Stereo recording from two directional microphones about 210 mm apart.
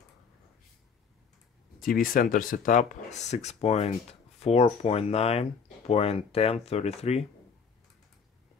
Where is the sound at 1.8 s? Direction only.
45° left (ahead or behind).